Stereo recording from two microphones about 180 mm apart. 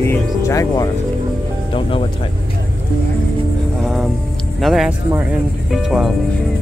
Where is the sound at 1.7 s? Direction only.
30° left (ahead or behind).